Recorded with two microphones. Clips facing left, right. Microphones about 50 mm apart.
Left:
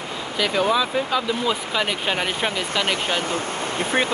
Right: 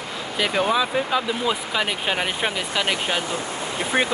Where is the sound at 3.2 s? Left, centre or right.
Left.